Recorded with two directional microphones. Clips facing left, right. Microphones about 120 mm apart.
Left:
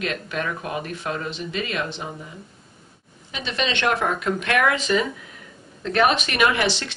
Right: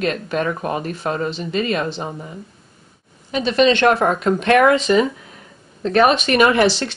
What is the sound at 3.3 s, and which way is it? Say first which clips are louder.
Speech: right 11 dB; 40° right (ahead or behind).